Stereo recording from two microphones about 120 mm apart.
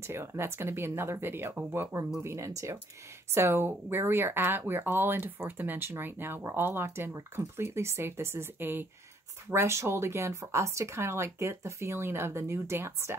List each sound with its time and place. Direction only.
0.0 s speech: 20° right (ahead or behind)